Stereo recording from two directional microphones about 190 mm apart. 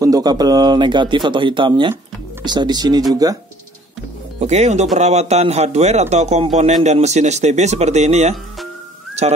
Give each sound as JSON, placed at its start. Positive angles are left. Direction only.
{"t": 0.0, "sound": "speech", "side_deg": -20}
{"t": 4.4, "sound": "a man's voice", "side_deg": -35}